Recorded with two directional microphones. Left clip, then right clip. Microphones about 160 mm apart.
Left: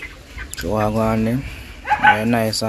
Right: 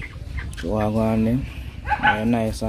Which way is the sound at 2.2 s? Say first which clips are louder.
Left 4 dB; 10° right (ahead or behind).